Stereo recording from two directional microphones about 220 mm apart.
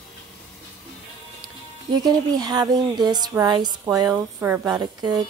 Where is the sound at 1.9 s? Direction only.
20° right (ahead or behind).